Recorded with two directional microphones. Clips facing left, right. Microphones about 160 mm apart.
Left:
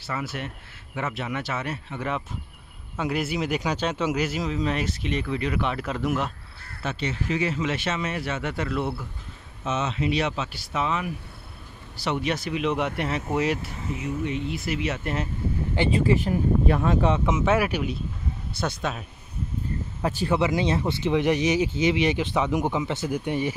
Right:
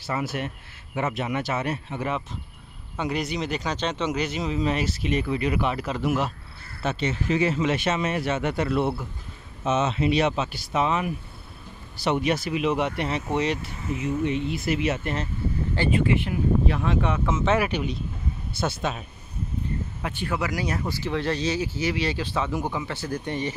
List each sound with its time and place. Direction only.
0.1 s speech: 30° right (ahead or behind)
3.0 s speech: 5° left (ahead or behind)
6.8 s speech: 25° right (ahead or behind)
7.7 s speech: 15° right (ahead or behind); by 13.6 s 5° left (ahead or behind)
14.2 s speech: 25° right (ahead or behind)
15.0 s speech: centre (ahead or behind)
16.1 s speech: 40° left (ahead or behind)
17.3 s speech: 5° left (ahead or behind)
20.0 s speech: 35° left (ahead or behind); by 23.5 s 10° left (ahead or behind)